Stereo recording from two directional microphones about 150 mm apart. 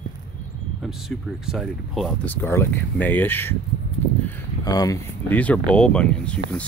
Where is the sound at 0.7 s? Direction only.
Centre (ahead or behind).